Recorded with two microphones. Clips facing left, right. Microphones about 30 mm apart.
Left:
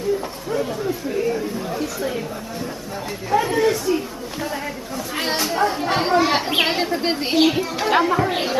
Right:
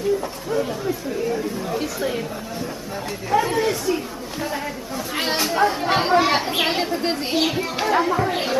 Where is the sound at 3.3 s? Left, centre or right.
Centre.